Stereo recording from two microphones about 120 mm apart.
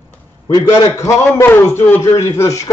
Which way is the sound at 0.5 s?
30° left (ahead or behind).